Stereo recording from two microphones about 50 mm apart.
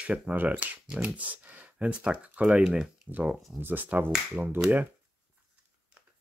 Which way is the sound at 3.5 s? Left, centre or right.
Right.